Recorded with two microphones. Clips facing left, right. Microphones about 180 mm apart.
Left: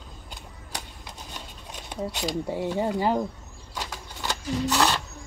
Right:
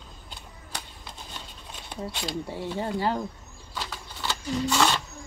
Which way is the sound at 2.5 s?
45° left (ahead or behind).